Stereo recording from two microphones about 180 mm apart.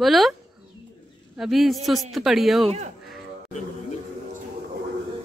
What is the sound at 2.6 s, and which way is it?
Speech, 40° right (ahead or behind).